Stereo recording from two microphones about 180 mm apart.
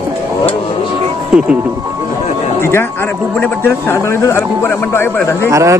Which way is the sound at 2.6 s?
15° left (ahead or behind).